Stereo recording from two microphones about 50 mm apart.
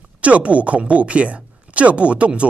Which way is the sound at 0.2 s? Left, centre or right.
Right.